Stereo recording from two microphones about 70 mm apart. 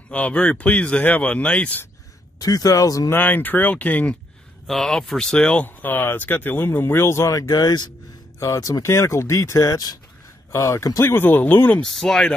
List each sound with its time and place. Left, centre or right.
0.1 s speech: centre
2.3 s speech: left
3.1 s speech: left
4.6 s speech: centre; by 7.2 s left
7.2 s speech: left
8.4 s speech: left
8.8 s speech: left
10.5 s speech: left
11.8 s speech: centre